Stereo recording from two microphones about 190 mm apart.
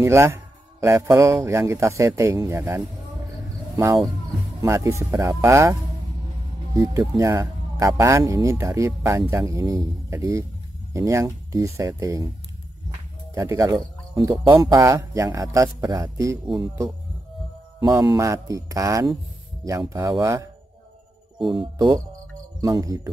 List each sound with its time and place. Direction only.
0.0 s a man's voice: 15° right (ahead or behind)
13.3 s a man's voice: 15° right (ahead or behind)
21.7 s a man's voice: 15° right (ahead or behind)